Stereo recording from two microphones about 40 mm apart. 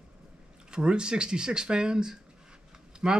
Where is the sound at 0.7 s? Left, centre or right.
Right.